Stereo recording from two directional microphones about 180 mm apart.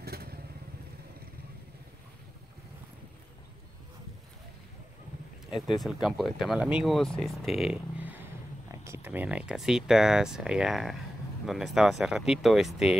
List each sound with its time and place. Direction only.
0.0 s vehicle: 60° right (ahead or behind)
5.8 s speech: centre (ahead or behind)